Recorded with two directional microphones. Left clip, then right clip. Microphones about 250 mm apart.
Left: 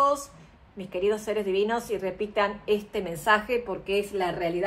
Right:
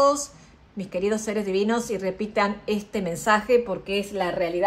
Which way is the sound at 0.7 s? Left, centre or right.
Right.